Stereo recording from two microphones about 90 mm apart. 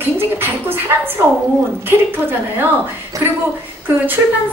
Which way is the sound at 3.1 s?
40° right (ahead or behind).